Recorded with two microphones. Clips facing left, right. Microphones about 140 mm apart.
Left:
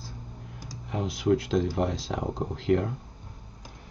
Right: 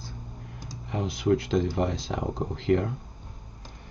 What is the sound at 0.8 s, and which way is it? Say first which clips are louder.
Speech: even; centre (ahead or behind).